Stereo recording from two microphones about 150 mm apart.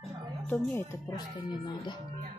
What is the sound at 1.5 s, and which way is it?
Speech, 30° left (ahead or behind).